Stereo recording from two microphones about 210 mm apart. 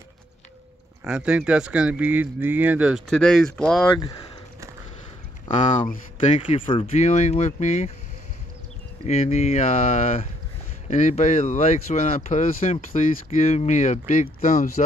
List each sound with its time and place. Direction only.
1.0 s speech: 5° right (ahead or behind)
5.5 s speech: 25° left (ahead or behind)
9.0 s speech: 30° left (ahead or behind)